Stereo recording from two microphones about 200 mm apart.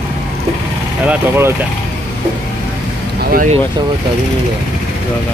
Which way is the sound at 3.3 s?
35° right (ahead or behind).